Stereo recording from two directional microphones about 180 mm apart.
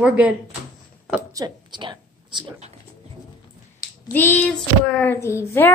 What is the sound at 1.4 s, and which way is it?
A woman's voice, 25° right (ahead or behind).